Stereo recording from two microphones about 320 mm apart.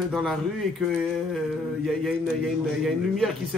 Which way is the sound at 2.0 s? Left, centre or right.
Centre.